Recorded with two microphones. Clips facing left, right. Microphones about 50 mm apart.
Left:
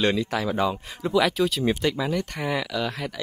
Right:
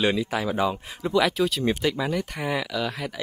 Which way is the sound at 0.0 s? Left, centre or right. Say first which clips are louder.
Even; centre.